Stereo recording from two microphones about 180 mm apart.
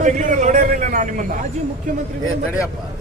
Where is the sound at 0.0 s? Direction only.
45° right (ahead or behind).